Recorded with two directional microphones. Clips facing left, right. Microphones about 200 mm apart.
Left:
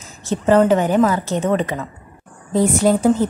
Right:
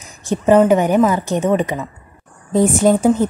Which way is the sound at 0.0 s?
15° right (ahead or behind).